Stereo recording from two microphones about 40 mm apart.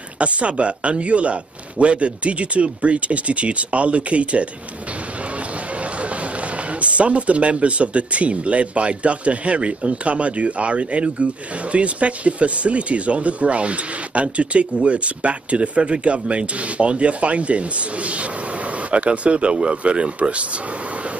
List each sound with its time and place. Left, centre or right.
0.2 s speech: right
6.8 s speech: right